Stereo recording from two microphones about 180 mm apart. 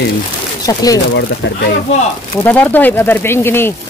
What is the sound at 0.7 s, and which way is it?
Speech, 20° left (ahead or behind).